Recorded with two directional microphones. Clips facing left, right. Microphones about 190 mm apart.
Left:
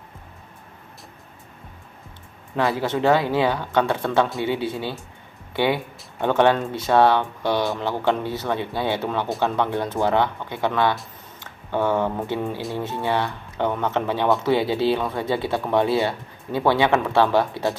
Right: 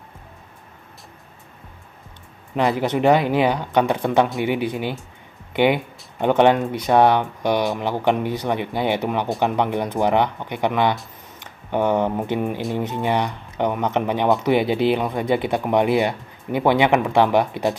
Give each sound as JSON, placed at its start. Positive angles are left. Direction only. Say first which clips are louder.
{"t": 2.5, "sound": "speech", "louder": "right 2 dB", "side_deg": -20}